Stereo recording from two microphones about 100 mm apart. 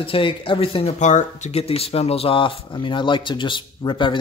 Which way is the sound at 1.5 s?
80° left.